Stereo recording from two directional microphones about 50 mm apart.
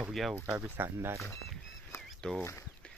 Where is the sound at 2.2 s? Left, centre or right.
Centre.